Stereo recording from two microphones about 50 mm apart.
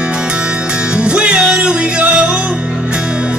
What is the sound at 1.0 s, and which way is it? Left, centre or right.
Music, right.